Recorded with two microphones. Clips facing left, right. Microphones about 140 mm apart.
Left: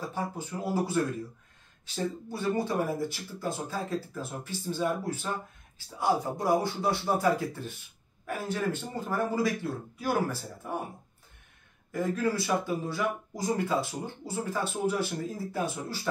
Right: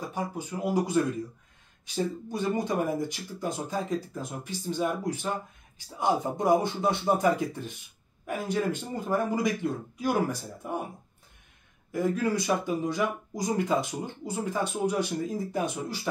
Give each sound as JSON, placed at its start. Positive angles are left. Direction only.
{"t": 0.0, "sound": "speech", "side_deg": -15}
{"t": 2.3, "sound": "speech", "side_deg": -15}
{"t": 11.9, "sound": "speech", "side_deg": -15}